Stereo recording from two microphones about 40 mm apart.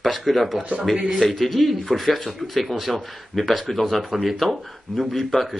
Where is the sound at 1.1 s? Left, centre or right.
Centre.